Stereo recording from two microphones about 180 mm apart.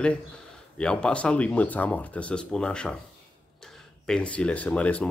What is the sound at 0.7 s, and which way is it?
Speech, 5° left (ahead or behind).